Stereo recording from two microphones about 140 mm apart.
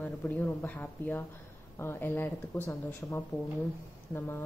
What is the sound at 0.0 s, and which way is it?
A woman's voice, 10° left (ahead or behind).